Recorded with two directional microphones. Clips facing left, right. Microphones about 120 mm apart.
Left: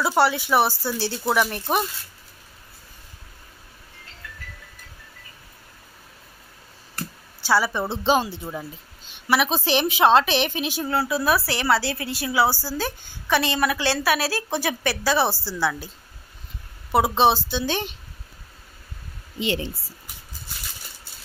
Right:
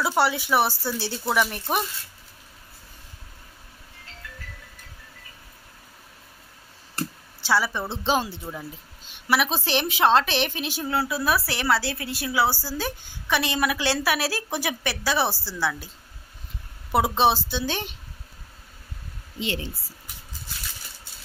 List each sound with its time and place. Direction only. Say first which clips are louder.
0.2 s speech: left 3 dB; centre (ahead or behind)
7.4 s speech: left 3 dB; 5° left (ahead or behind)
16.9 s speech: left 2 dB; centre (ahead or behind)
19.4 s a woman's voice: left 4 dB; 20° left (ahead or behind)